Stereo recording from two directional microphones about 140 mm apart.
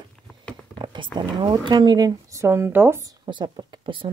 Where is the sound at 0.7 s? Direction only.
35° right (ahead or behind); by 3.0 s 15° right (ahead or behind).